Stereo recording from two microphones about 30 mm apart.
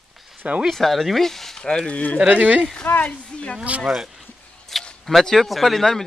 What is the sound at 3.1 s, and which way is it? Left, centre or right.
Speech, left.